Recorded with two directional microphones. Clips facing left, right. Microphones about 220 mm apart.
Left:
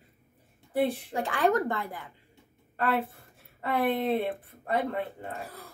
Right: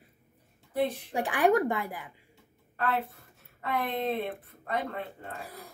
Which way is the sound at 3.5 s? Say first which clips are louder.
Left 3 dB; 30° left (ahead or behind).